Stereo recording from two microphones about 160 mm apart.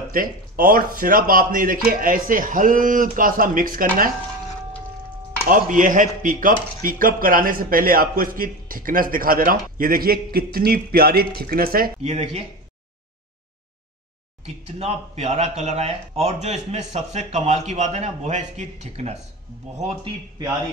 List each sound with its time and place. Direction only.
0.1 s a man's voice: 60° right (ahead or behind)
5.5 s a man's voice: 55° right (ahead or behind)
12.0 s a man's voice: 45° right (ahead or behind)
14.8 s a man's voice: 45° right (ahead or behind)